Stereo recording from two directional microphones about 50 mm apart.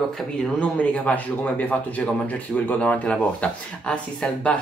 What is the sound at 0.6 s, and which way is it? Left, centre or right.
Speech, left.